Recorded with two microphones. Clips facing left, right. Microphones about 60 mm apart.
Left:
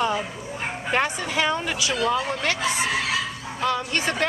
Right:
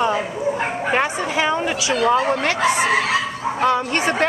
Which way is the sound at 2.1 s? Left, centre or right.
Right.